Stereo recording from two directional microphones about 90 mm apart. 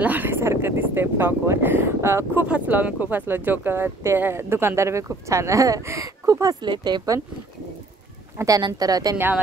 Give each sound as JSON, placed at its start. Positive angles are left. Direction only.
{"t": 0.0, "sound": "speech", "side_deg": -20}
{"t": 2.4, "sound": "speech", "side_deg": -15}
{"t": 6.6, "sound": "speech", "side_deg": -55}
{"t": 8.4, "sound": "speech", "side_deg": -40}